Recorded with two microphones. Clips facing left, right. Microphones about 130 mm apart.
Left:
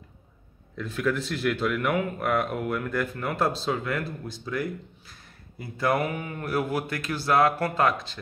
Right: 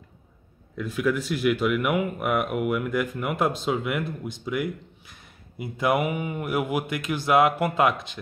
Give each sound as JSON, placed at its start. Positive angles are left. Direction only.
{"t": 0.7, "sound": "speech", "side_deg": -10}